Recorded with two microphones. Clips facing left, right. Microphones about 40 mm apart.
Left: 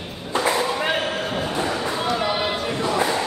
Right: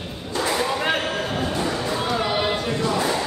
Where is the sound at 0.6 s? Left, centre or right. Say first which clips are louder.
Even; centre.